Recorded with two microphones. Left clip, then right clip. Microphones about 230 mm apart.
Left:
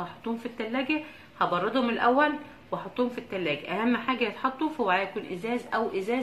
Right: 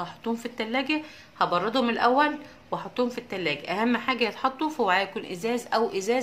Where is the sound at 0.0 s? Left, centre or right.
Right.